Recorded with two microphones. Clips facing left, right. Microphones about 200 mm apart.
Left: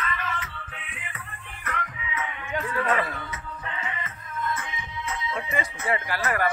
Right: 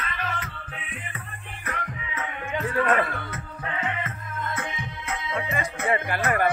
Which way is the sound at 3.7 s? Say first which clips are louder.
Right 7 dB; 55° right (ahead or behind).